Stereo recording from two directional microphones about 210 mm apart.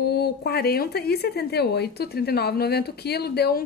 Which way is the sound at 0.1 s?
50° left (ahead or behind).